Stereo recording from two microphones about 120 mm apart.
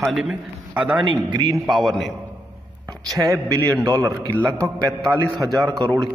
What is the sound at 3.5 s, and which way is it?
Mantra, 25° right (ahead or behind).